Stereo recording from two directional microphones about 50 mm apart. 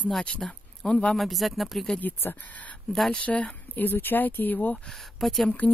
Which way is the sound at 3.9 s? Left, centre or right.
Left.